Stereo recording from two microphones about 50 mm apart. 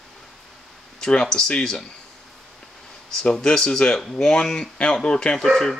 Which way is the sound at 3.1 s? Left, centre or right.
Centre.